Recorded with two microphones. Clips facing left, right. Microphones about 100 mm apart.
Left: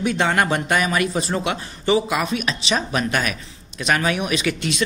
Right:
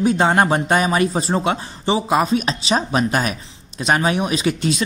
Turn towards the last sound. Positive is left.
turn(degrees=-35)  # may be behind; listen again after turning